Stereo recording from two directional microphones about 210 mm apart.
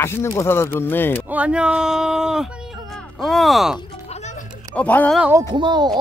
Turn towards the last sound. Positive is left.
turn(degrees=-20)  # may be behind; listen again after turning